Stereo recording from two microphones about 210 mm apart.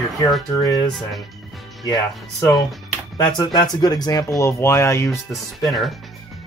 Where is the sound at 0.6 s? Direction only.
15° left (ahead or behind).